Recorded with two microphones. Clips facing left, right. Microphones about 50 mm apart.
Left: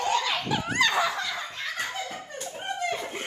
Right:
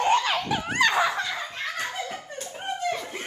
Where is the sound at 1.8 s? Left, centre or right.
Right.